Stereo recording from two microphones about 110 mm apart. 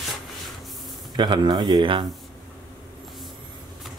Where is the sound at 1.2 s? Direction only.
45° right (ahead or behind).